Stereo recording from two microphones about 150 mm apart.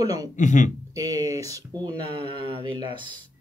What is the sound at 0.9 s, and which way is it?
Speech, 25° right (ahead or behind).